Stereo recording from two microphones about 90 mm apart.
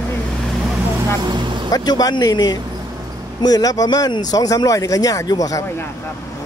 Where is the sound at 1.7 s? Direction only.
45° left (ahead or behind).